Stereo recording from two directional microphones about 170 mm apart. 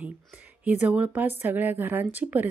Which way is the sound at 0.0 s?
10° right (ahead or behind).